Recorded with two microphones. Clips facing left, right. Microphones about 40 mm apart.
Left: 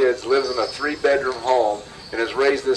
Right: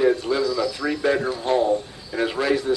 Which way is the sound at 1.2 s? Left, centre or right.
Centre.